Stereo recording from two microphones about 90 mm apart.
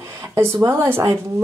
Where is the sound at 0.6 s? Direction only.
25° right (ahead or behind).